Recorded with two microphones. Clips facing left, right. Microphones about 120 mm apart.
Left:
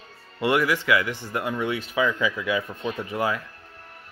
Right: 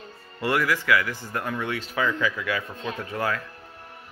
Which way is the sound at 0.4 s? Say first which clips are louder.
Left 2 dB; 20° left (ahead or behind).